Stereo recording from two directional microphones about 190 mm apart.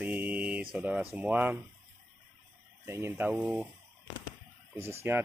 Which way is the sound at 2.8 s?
10° right (ahead or behind).